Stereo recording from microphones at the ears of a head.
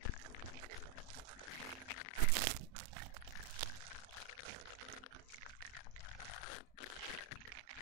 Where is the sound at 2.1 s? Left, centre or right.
Right.